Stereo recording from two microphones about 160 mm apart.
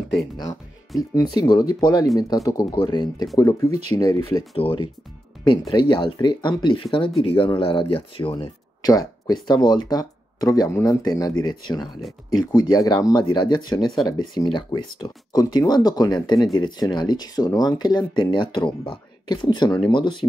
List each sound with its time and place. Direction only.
1.1 s speech: 25° left (ahead or behind)